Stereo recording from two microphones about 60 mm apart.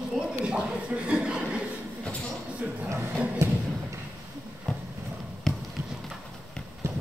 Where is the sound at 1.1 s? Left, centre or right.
Centre.